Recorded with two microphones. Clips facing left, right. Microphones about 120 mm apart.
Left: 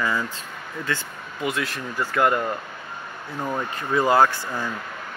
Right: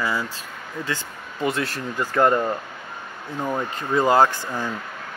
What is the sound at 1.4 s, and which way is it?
Speech, 35° right (ahead or behind).